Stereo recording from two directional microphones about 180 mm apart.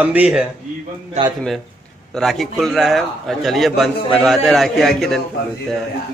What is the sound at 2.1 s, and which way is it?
A man's voice, centre (ahead or behind).